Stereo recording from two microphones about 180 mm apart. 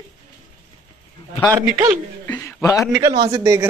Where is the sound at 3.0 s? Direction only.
20° right (ahead or behind).